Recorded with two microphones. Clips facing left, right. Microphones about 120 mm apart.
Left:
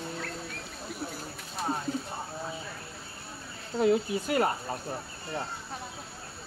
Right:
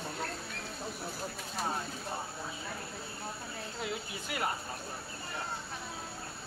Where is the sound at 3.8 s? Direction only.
40° left (ahead or behind).